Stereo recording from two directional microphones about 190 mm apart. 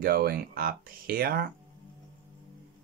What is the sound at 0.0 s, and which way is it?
Speech, 55° right (ahead or behind).